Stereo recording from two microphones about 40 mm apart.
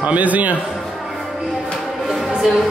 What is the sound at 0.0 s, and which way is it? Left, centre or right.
Speech, right.